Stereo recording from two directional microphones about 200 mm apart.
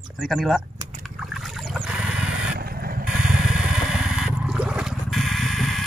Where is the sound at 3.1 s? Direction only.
5° right (ahead or behind).